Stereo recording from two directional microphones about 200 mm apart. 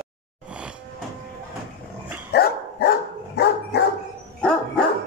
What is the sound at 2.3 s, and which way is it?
Dog, 55° left (ahead or behind).